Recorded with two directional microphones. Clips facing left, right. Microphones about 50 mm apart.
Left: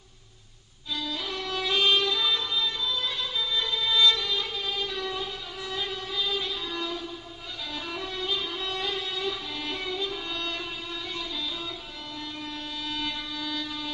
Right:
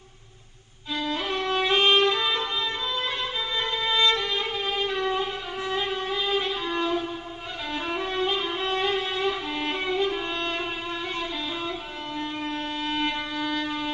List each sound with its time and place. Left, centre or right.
0.9 s violin: right
7.7 s music: right
12.2 s violin: right